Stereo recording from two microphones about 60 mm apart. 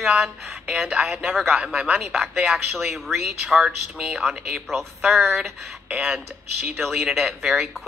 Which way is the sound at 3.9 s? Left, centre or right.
Centre.